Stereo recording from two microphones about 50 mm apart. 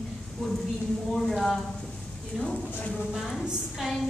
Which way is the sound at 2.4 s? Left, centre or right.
Left.